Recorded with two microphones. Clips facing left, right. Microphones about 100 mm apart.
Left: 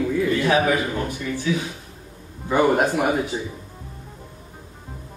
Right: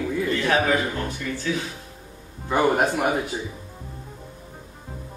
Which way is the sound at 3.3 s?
20° left (ahead or behind).